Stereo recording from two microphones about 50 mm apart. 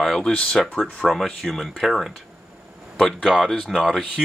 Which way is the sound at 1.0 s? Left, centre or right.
Centre.